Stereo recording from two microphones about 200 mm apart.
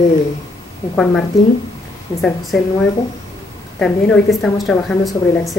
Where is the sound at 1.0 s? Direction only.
5° left (ahead or behind).